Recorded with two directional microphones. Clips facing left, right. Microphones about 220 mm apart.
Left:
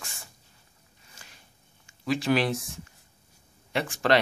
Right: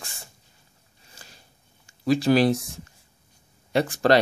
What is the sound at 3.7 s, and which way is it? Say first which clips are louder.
Speech: right 5 dB; 40° right (ahead or behind).